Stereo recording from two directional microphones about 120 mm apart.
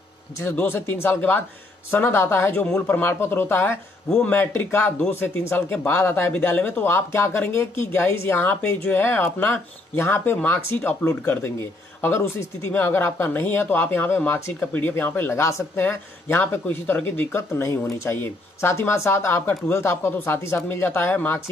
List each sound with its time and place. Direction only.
0.4 s speech: 20° left (ahead or behind)